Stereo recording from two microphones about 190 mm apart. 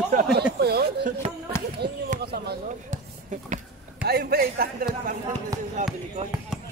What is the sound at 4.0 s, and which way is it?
Speech, 55° right (ahead or behind).